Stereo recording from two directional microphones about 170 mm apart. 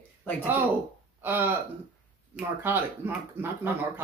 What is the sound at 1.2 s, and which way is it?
Speech, 10° right (ahead or behind).